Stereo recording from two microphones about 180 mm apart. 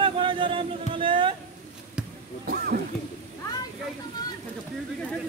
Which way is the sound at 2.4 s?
55° right (ahead or behind).